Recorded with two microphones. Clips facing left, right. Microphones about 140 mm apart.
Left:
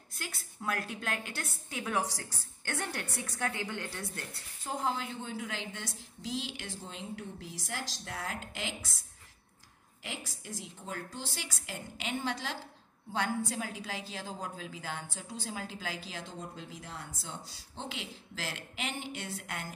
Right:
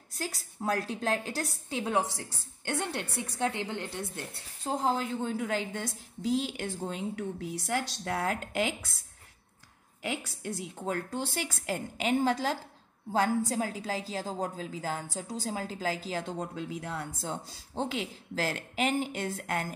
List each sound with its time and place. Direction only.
0.1 s a woman's voice: 35° right (ahead or behind)
7.2 s speech: 60° right (ahead or behind)
10.2 s a woman's voice: 60° right (ahead or behind); by 16.3 s 45° right (ahead or behind)
16.3 s speech: 60° right (ahead or behind)